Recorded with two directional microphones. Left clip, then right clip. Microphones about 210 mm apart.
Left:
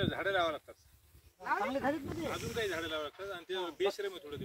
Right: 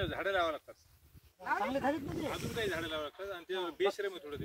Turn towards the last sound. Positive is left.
turn(degrees=-40)  # may be behind; listen again after turning